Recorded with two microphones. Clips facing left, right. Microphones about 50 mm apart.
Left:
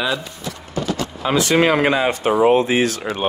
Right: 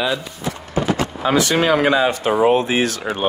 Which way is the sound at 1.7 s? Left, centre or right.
Right.